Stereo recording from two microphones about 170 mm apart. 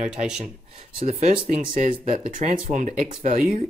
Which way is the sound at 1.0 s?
40° right (ahead or behind).